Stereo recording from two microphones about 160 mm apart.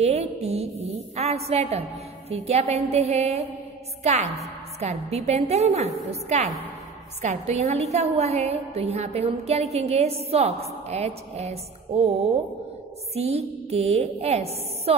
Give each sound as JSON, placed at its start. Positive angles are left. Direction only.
{"t": 0.0, "sound": "a woman's voice", "side_deg": -40}